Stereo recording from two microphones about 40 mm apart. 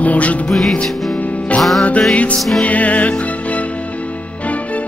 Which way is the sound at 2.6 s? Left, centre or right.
Left.